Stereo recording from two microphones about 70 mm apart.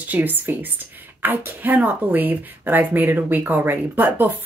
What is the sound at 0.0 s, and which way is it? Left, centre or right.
Speech, right.